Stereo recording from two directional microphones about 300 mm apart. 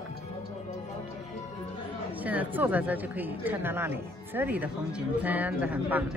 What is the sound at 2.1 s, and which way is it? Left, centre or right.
Speech, centre.